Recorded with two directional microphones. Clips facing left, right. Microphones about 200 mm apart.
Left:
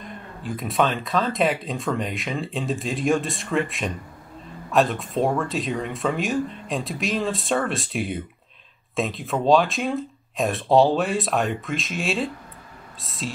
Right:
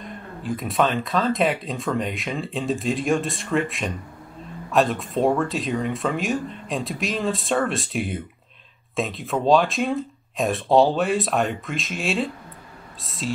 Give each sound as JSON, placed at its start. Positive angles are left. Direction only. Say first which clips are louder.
{"t": 0.4, "sound": "speech", "louder": "right 1 dB", "side_deg": 0}